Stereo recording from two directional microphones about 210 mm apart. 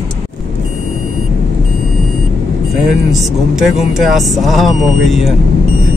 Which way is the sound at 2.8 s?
Centre (ahead or behind).